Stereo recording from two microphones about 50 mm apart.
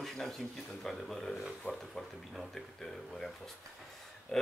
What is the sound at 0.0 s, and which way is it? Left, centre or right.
A man's voice, centre.